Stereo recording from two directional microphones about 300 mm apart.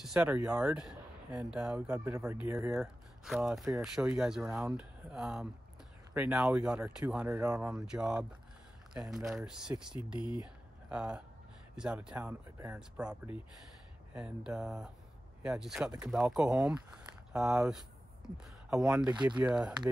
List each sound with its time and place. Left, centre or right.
0.0 s speech: centre